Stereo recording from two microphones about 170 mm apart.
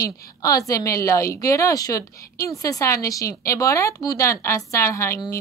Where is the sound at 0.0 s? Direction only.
20° left (ahead or behind).